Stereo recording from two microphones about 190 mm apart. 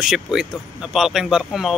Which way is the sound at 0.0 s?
5° right (ahead or behind).